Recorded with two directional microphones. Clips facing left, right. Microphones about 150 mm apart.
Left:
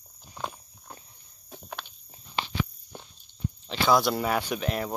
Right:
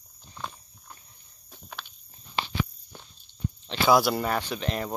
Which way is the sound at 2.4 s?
20° left (ahead or behind).